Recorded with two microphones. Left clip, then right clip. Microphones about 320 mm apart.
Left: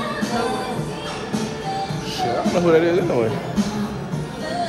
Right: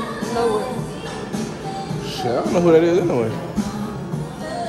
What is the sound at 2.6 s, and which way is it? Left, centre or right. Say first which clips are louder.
Speech: right 2 dB; centre.